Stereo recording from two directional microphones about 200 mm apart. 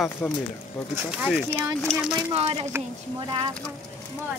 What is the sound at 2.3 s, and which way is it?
Speech, 30° right (ahead or behind).